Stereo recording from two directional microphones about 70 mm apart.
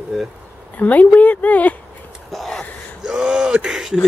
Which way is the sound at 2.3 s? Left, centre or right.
Centre.